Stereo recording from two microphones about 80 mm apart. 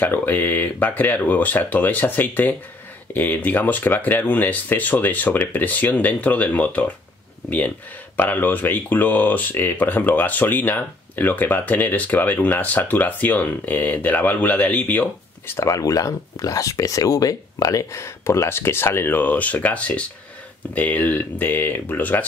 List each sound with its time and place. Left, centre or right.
0.0 s speech: left